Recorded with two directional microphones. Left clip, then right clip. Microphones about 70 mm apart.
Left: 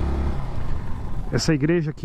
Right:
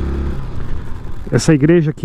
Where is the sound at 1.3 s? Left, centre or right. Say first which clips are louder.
Right 9 dB; centre.